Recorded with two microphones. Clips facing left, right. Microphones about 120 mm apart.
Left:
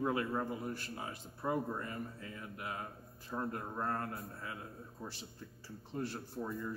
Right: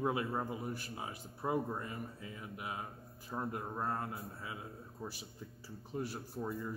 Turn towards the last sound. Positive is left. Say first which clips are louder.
# even
turn(degrees=-10)  # may be behind; listen again after turning